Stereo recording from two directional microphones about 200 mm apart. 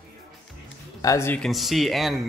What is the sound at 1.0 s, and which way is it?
Speech, 15° left (ahead or behind).